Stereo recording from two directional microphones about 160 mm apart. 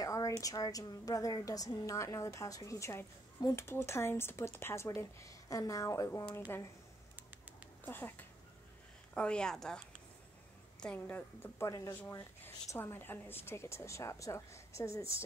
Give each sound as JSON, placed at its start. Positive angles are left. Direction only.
{"t": 0.0, "sound": "a sound", "side_deg": 20}
{"t": 0.4, "sound": "a woman's voice", "side_deg": 20}
{"t": 7.8, "sound": "a woman's voice", "side_deg": 10}